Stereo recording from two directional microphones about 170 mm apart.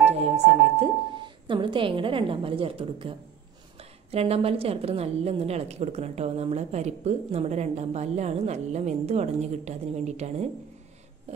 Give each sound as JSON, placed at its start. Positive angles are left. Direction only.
{"t": 0.7, "sound": "a woman's voice", "side_deg": -30}